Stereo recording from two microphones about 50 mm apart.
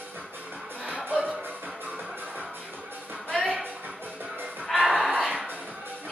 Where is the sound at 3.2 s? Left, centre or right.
Centre.